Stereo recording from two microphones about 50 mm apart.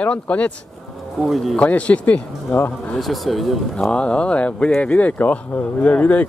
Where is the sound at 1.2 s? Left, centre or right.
Centre.